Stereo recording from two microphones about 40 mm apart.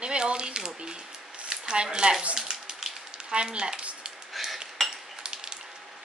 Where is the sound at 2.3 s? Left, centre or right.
Centre.